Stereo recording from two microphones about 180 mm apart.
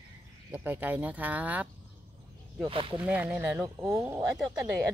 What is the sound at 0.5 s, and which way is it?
Speech, 10° right (ahead or behind).